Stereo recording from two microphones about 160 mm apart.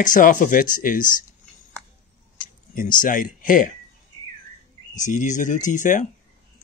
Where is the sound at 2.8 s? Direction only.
60° left (ahead or behind).